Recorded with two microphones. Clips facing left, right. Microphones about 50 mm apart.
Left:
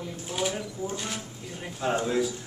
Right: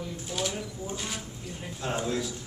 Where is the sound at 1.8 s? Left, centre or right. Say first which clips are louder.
Left 5 dB; centre.